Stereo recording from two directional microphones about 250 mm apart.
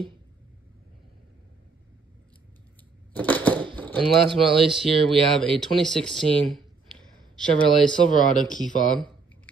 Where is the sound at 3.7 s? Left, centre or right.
Centre.